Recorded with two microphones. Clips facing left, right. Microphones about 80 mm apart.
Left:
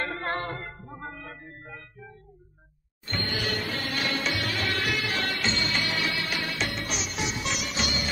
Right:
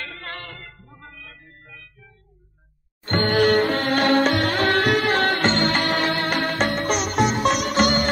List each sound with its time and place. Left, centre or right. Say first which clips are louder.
0.0 s music: left 5 dB; left
3.1 s music: right 13 dB; right